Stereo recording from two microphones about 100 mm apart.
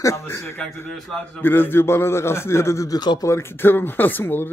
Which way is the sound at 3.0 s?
45° left (ahead or behind).